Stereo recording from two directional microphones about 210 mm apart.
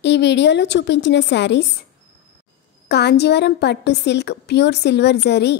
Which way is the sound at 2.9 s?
50° left (ahead or behind).